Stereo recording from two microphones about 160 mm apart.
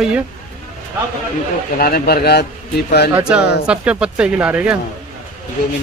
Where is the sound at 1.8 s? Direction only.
75° left (ahead or behind).